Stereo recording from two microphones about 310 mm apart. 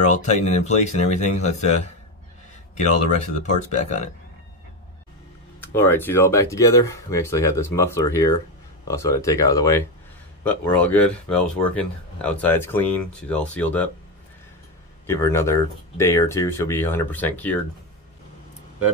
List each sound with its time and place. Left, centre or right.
0.0 s speech: left
3.7 s speech: left
5.8 s speech: centre
15.0 s speech: centre